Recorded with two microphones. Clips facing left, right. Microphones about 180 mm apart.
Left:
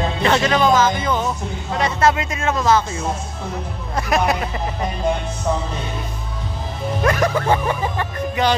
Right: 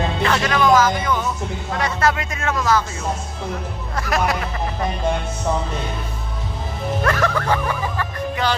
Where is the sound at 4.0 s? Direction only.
20° left (ahead or behind).